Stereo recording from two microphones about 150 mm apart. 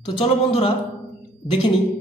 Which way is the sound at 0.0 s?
35° left (ahead or behind).